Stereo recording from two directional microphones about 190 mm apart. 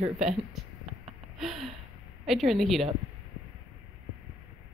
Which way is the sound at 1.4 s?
Centre (ahead or behind).